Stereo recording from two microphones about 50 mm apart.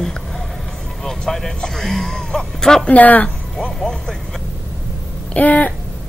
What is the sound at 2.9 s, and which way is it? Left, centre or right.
Speech, left.